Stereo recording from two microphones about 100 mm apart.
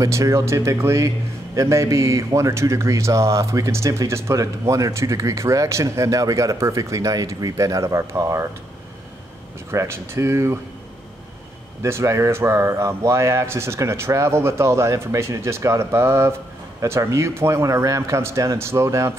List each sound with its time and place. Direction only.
0.0 s a man's voice: 30° right (ahead or behind)
9.7 s speech: 25° right (ahead or behind)
11.8 s speech: 30° right (ahead or behind)